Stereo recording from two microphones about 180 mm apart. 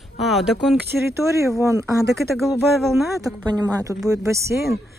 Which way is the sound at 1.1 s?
15° right (ahead or behind).